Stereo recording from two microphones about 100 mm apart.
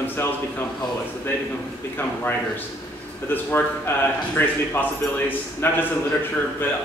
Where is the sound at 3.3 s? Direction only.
20° left (ahead or behind).